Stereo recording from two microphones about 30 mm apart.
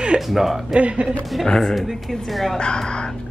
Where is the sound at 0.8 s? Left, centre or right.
Right.